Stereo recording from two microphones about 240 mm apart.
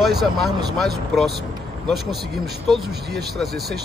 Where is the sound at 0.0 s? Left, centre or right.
Centre.